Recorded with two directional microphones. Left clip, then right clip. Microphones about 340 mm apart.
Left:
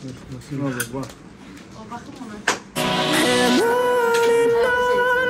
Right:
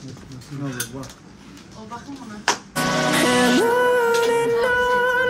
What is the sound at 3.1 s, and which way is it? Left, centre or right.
Music, centre.